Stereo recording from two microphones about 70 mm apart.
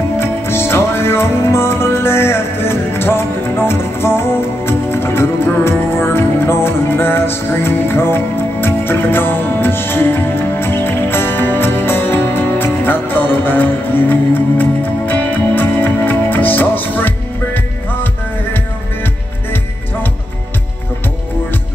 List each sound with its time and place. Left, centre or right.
0.2 s music: left